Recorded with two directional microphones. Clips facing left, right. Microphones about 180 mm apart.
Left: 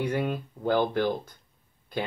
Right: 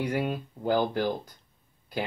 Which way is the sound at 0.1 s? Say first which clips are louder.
Left 1 dB; 15° right (ahead or behind).